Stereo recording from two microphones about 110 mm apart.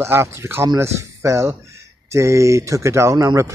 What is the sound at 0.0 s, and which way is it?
Speech, 25° right (ahead or behind).